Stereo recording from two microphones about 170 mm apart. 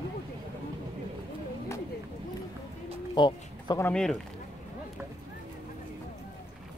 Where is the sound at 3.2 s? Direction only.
25° left (ahead or behind).